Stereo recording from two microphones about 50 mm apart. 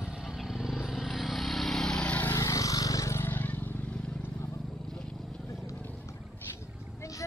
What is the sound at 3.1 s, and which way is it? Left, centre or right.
Vehicle, left.